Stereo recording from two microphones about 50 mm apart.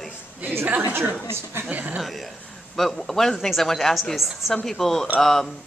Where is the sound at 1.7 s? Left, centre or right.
Right.